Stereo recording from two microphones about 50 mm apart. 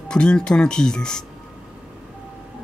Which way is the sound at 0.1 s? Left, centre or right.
Centre.